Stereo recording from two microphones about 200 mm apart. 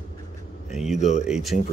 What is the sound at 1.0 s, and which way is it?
Speech, 35° left (ahead or behind).